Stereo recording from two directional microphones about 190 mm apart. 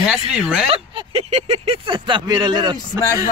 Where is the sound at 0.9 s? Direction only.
30° right (ahead or behind).